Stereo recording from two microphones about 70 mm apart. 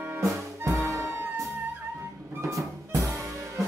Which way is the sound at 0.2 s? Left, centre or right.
Right.